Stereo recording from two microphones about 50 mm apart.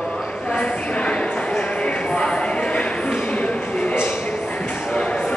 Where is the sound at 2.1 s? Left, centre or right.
Centre.